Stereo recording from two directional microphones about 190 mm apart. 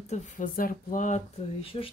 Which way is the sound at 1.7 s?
25° left (ahead or behind).